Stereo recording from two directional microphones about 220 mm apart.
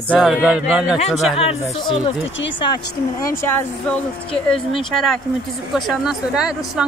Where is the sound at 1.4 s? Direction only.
25° left (ahead or behind).